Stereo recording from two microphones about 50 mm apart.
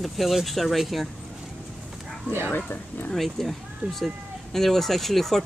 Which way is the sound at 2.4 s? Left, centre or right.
Left.